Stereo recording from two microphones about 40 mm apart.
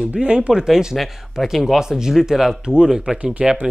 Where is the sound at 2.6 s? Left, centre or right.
Right.